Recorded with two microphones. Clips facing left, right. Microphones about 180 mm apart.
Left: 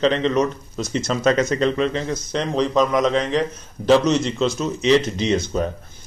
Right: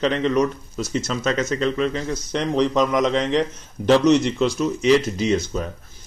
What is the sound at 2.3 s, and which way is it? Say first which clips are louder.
Speech: right 3 dB; 15° right (ahead or behind).